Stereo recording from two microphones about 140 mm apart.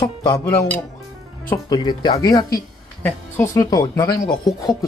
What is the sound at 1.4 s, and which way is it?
Speech, 25° left (ahead or behind).